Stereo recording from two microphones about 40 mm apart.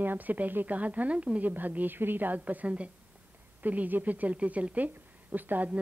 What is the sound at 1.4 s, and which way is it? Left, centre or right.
Speech, right.